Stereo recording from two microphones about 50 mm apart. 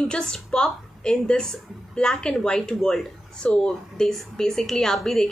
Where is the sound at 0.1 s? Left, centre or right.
Centre.